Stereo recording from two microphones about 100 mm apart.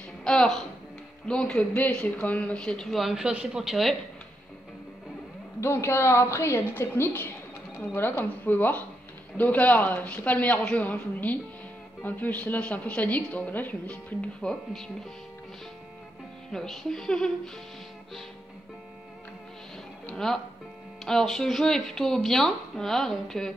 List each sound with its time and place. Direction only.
0.2 s a woman's voice: 10° left (ahead or behind)
5.6 s a woman's voice: 25° left (ahead or behind); by 14.9 s 5° left (ahead or behind)
16.5 s speech: 5° left (ahead or behind)
20.1 s music: 5° left (ahead or behind)
21.0 s speech: 5° left (ahead or behind)